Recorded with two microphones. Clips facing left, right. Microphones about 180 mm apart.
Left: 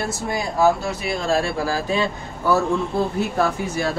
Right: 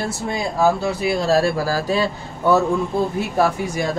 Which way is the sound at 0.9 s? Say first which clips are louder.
Right 4 dB; 35° right (ahead or behind).